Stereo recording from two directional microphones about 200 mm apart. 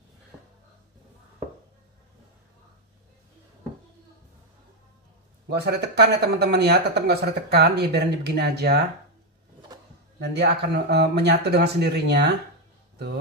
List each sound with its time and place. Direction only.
5.5 s speech: 55° right (ahead or behind)
10.2 s speech: 55° right (ahead or behind)